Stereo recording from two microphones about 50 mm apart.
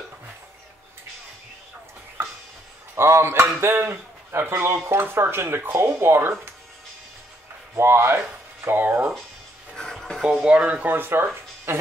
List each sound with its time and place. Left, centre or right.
2.2 s music: right
3.0 s speech: right
7.7 s speech: right
8.7 s speech: right
9.8 s a sound: centre
10.4 s speech: right
10.9 s speech: right